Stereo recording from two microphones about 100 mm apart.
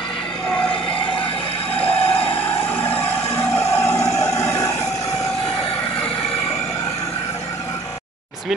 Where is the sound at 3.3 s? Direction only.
25° left (ahead or behind).